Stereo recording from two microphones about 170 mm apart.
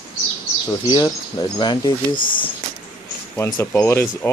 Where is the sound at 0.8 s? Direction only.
25° left (ahead or behind).